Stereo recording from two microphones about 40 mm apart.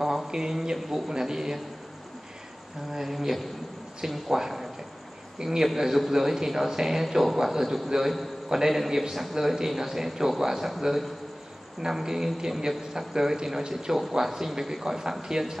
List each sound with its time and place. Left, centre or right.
0.3 s a man's voice: centre
2.9 s a man's voice: centre